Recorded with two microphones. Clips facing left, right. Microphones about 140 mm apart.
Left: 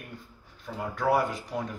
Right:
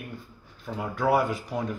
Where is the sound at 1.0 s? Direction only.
Centre (ahead or behind).